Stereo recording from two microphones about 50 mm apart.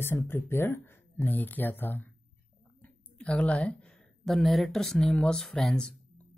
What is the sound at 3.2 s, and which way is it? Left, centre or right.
Speech, left.